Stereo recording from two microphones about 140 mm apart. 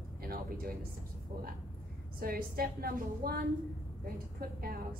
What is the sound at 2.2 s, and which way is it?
A woman's voice, 90° right.